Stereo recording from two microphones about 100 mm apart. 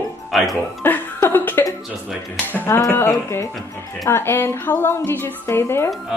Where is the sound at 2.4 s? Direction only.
20° left (ahead or behind).